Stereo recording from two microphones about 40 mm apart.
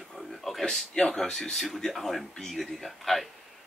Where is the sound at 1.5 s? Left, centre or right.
Centre.